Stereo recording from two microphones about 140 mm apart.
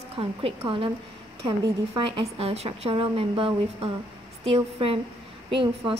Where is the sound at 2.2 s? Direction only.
45° right (ahead or behind).